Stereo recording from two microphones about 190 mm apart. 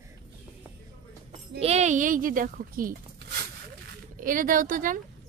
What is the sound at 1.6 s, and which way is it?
A woman's voice, 35° right (ahead or behind).